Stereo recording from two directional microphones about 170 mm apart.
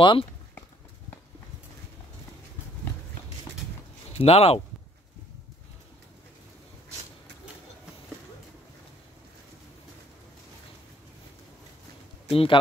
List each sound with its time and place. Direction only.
0.0 s speech: 30° left (ahead or behind)
4.1 s speech: 35° left (ahead or behind)
12.3 s a man's voice: 35° left (ahead or behind)